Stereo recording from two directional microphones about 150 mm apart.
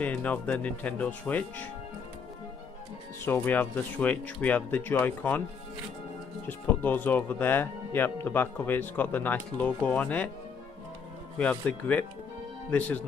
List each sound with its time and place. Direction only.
0.0 s speech: 10° left (ahead or behind)
3.3 s speech: 10° left (ahead or behind)
6.4 s speech: 10° left (ahead or behind)
11.3 s speech: 10° left (ahead or behind)